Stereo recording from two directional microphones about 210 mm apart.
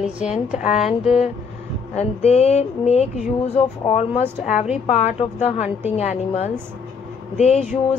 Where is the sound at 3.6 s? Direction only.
30° left (ahead or behind).